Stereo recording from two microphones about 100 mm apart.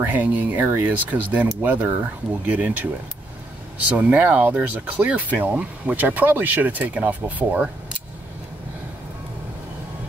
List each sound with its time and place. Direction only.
0.0 s speech: 20° right (ahead or behind)
3.9 s speech: 15° right (ahead or behind)